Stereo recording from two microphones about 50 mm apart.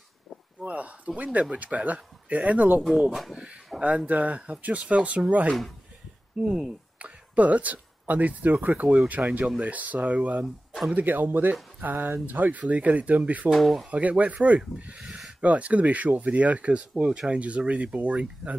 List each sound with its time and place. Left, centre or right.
0.6 s speech: right
3.8 s speech: right
10.4 s speech: centre
11.0 s speech: right
13.5 s speech: centre
13.8 s speech: right